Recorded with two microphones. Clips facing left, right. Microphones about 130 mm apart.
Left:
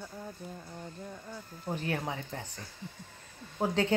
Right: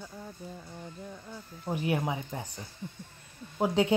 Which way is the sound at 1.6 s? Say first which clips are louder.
Right 4 dB; 15° right (ahead or behind).